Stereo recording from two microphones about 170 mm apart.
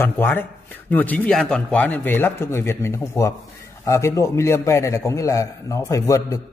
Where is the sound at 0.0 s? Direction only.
10° left (ahead or behind).